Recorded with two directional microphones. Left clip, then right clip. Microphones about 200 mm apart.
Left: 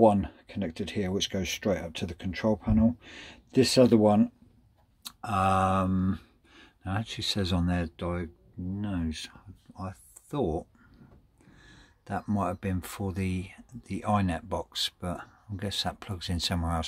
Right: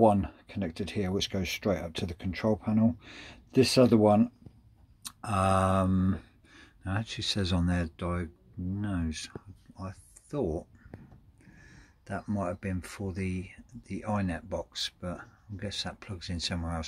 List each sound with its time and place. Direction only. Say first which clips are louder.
0.0 s speech: left 2 dB; 5° left (ahead or behind)
9.8 s speech: left 3 dB; 25° left (ahead or behind)